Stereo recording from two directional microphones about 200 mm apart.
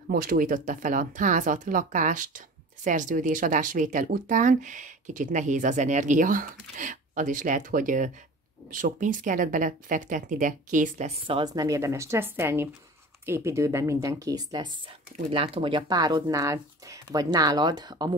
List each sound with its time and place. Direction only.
0.1 s speech: 45° right (ahead or behind); by 18.1 s 20° right (ahead or behind)